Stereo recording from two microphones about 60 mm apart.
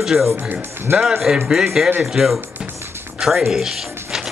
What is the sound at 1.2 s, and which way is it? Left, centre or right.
Speech, centre.